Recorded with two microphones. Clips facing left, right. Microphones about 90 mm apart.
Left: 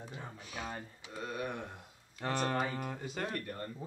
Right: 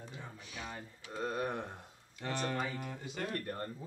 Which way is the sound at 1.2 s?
40° right (ahead or behind).